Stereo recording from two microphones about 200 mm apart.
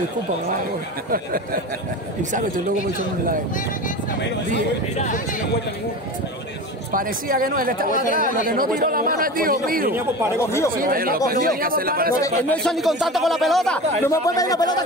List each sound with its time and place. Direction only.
4.9 s speech: 40° left (ahead or behind)
6.9 s speech: 45° right (ahead or behind)
10.4 s speech: 15° left (ahead or behind)
10.7 s speech: 45° right (ahead or behind)
12.2 s speech: 15° left (ahead or behind)
12.6 s speech: centre (ahead or behind)
14.0 s speech: 15° left (ahead or behind)